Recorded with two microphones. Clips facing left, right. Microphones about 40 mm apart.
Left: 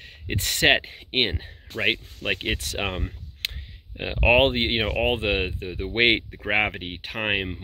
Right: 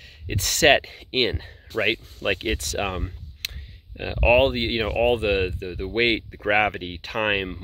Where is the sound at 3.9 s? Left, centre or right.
Left.